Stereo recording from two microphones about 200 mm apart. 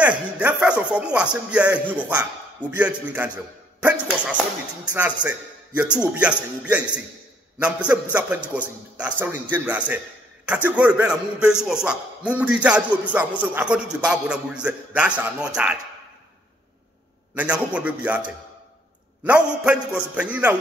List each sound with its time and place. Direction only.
0.0 s a man's voice: 5° right (ahead or behind)
4.9 s a man's voice: 5° right (ahead or behind)
17.4 s a man's voice: 5° right (ahead or behind)